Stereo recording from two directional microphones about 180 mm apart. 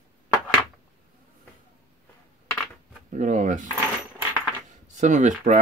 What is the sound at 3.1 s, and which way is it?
Speech, 45° right (ahead or behind).